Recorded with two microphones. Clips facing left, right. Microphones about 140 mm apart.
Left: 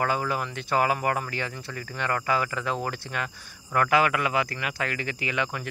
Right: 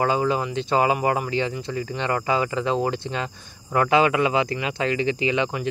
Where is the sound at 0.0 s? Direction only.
25° right (ahead or behind).